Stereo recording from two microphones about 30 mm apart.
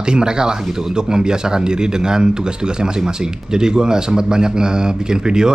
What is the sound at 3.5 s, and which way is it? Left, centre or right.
Speech, right.